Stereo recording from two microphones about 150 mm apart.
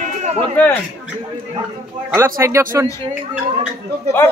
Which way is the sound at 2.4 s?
20° right (ahead or behind).